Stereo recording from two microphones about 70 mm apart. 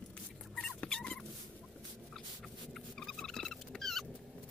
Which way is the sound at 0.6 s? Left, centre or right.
Centre.